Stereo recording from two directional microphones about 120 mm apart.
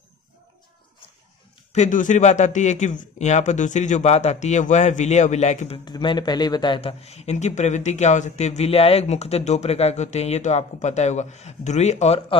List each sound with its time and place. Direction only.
1.7 s a man's voice: 85° left
5.9 s speech: 35° left (ahead or behind); by 12.2 s 70° left (ahead or behind)